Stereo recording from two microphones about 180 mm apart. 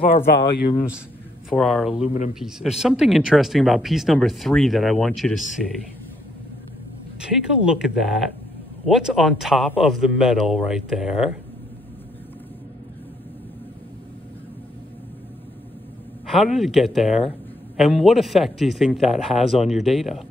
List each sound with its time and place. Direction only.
0.3 s speech: 70° left (ahead or behind)
1.5 s speech: centre (ahead or behind)
7.2 s speech: 5° right (ahead or behind)
16.3 s speech: centre (ahead or behind)